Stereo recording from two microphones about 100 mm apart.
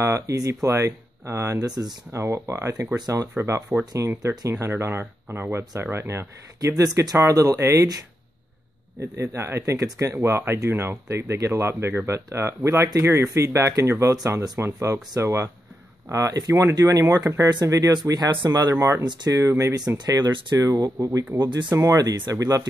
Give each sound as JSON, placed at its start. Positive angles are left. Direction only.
{"t": 0.0, "sound": "speech", "side_deg": -30}
{"t": 6.8, "sound": "speech", "side_deg": -40}
{"t": 9.0, "sound": "speech", "side_deg": -25}
{"t": 14.6, "sound": "speech", "side_deg": -25}
{"t": 21.7, "sound": "speech", "side_deg": -35}